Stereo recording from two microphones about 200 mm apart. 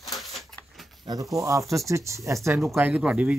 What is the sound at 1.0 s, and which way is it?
Speech, 20° right (ahead or behind).